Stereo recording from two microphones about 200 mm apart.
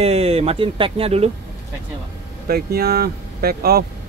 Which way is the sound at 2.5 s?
50° right (ahead or behind).